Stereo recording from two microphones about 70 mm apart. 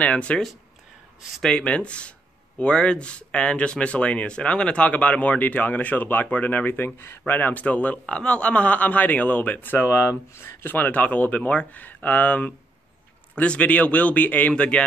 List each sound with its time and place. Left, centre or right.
0.0 s speech: centre
1.4 s speech: centre; by 7.3 s left
7.3 s speech: left
9.8 s speech: left; by 14.8 s centre